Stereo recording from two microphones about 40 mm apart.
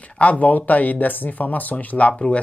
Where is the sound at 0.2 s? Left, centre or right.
Left.